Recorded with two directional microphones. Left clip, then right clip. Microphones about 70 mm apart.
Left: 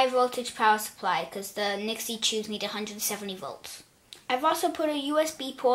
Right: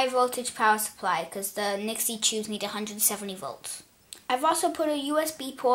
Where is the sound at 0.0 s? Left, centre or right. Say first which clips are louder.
Left 1 dB; right.